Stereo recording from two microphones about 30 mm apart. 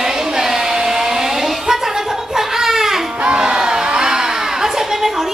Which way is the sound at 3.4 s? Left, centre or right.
Right.